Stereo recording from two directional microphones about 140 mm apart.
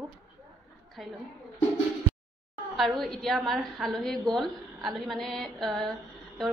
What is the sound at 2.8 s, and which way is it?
A woman's voice, centre (ahead or behind).